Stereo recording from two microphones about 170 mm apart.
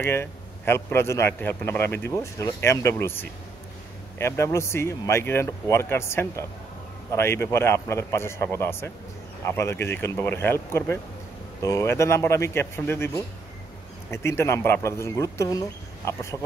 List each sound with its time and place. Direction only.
0.0 s a man's voice: 15° left (ahead or behind)